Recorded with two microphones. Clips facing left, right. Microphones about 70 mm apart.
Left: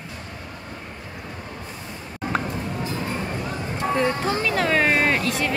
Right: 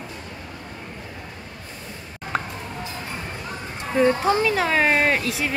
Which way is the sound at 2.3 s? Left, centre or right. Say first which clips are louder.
Even; centre.